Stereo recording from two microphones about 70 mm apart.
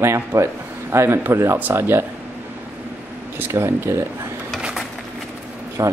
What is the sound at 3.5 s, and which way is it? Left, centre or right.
Speech, right.